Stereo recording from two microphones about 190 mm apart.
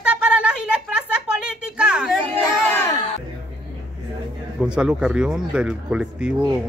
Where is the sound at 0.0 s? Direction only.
5° right (ahead or behind).